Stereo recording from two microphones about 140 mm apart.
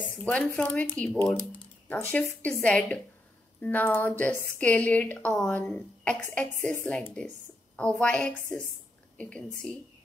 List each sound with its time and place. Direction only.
0.2 s speech: 10° left (ahead or behind)